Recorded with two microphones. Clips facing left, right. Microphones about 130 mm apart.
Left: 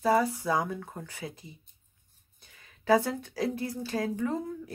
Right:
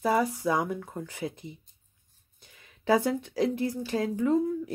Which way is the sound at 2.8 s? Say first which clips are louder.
Even; 15° right (ahead or behind).